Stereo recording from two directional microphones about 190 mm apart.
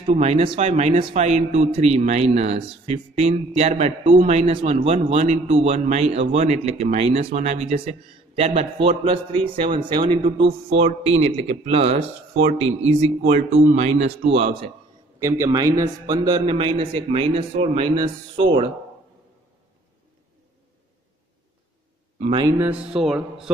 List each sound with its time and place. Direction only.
0.0 s a man's voice: 35° right (ahead or behind)
15.1 s a man's voice: 15° right (ahead or behind)
22.2 s a man's voice: 25° right (ahead or behind)
22.5 s speech: 10° right (ahead or behind)